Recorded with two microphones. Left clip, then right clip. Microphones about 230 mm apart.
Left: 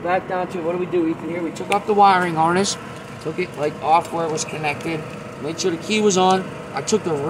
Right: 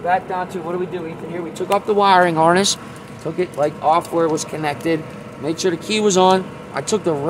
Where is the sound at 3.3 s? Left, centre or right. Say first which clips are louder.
Right 4 dB; right.